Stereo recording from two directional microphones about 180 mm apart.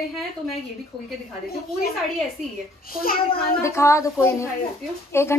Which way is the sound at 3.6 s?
15° left (ahead or behind).